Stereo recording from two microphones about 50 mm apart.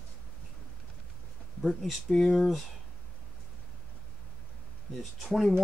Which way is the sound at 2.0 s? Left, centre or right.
Centre.